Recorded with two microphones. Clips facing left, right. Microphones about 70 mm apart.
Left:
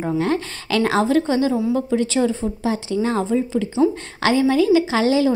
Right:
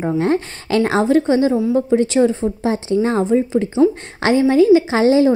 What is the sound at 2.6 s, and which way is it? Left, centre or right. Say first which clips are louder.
A woman's voice: right 4 dB; right.